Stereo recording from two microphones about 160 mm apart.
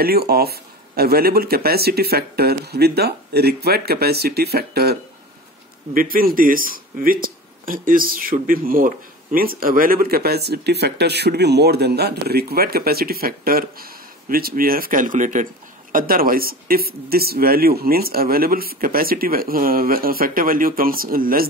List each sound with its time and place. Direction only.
0.0 s speech: 75° right (ahead or behind)
5.9 s speech: 65° right (ahead or behind)
15.9 s speech: 60° right (ahead or behind)